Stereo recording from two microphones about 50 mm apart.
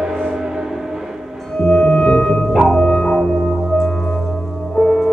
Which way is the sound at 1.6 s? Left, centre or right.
Centre.